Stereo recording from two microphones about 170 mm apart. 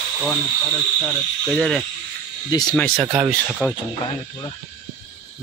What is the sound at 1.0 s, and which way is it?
Speech, 10° left (ahead or behind).